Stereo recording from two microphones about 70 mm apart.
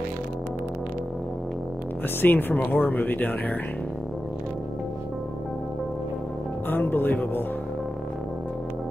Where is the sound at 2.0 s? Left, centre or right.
Left.